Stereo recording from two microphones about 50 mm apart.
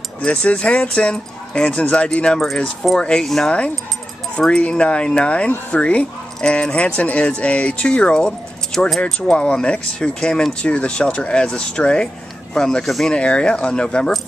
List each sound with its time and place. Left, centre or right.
0.2 s speech: left
2.4 s speech: centre
13.1 s speech: centre